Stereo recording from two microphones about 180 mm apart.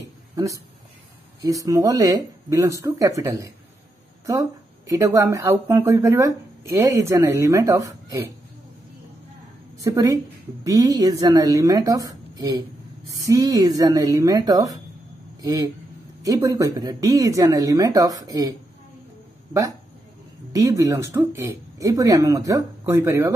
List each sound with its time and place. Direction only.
1.4 s speech: 20° right (ahead or behind)
9.8 s speech: 20° right (ahead or behind)
20.5 s speech: 20° right (ahead or behind)